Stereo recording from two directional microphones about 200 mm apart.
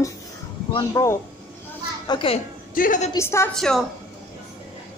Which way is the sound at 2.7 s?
40° left (ahead or behind).